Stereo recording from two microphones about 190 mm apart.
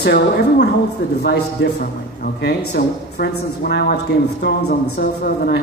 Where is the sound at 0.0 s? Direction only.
60° left (ahead or behind).